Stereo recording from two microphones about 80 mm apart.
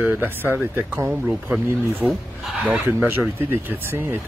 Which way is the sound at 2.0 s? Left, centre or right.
Centre.